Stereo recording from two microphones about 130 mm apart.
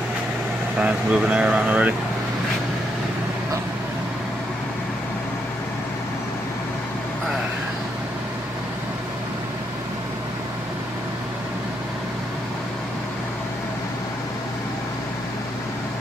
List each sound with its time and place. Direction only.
0.7 s speech: 10° right (ahead or behind)